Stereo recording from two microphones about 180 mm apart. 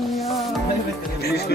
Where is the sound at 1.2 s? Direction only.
60° left (ahead or behind).